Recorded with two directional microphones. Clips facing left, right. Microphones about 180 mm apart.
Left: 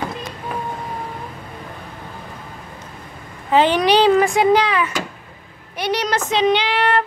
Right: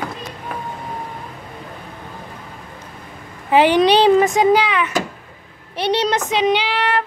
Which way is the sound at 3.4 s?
15° right (ahead or behind).